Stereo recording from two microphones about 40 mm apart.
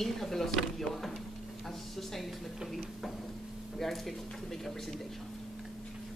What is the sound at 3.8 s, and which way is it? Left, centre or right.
Speech, centre.